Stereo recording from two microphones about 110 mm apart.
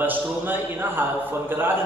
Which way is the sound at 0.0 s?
15° right (ahead or behind).